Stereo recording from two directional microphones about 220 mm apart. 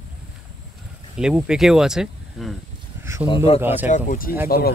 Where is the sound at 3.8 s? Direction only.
35° left (ahead or behind).